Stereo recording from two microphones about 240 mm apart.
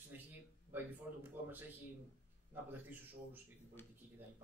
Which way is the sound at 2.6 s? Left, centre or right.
Centre.